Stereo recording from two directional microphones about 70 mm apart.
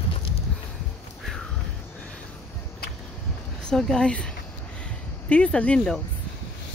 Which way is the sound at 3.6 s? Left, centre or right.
Centre.